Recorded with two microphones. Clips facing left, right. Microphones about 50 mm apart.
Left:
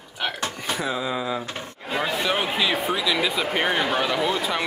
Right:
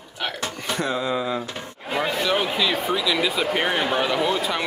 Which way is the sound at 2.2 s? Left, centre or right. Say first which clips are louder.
Right 1 dB; centre.